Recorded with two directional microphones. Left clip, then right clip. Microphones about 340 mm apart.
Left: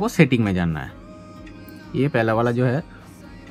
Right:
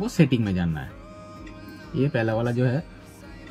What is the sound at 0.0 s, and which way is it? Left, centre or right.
Speech, centre.